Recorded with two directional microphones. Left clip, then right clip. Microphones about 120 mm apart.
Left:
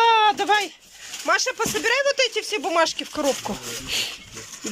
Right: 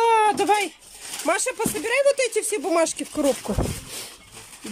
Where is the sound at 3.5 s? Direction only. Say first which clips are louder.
Right 1 dB; 10° right (ahead or behind).